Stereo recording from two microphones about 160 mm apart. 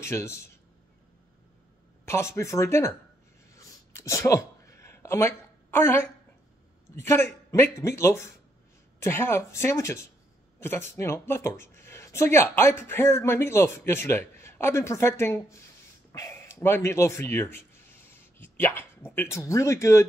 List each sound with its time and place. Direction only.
0.0 s speech: 15° left (ahead or behind)
2.0 s speech: 15° left (ahead or behind)
3.5 s a sound: 20° left (ahead or behind)
7.0 s speech: 15° left (ahead or behind)